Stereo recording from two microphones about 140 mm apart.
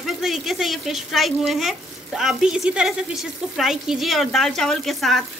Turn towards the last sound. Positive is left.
turn(degrees=0)  # may be behind; listen again after turning